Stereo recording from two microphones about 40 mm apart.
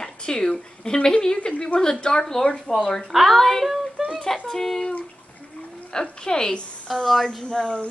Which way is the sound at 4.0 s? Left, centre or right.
Centre.